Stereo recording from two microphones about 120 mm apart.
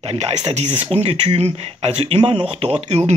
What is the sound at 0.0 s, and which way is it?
Speech, 65° right (ahead or behind).